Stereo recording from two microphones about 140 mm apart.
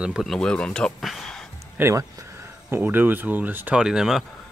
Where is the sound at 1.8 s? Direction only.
20° right (ahead or behind); by 4.2 s 5° right (ahead or behind).